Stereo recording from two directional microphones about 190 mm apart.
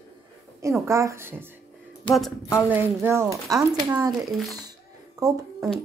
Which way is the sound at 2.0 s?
Centre (ahead or behind).